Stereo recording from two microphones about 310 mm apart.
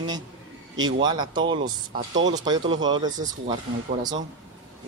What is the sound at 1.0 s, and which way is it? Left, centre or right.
Speech, centre.